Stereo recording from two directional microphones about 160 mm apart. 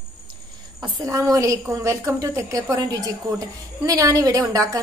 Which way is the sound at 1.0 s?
20° right (ahead or behind).